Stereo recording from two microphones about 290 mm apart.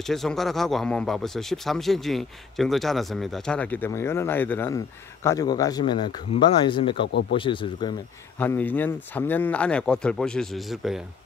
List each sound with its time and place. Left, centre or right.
0.0 s a man's voice: centre
7.1 s speech: left
7.3 s speech: centre
8.4 s a man's voice: centre